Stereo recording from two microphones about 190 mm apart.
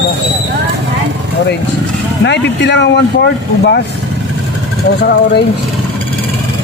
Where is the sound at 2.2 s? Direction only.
65° left (ahead or behind).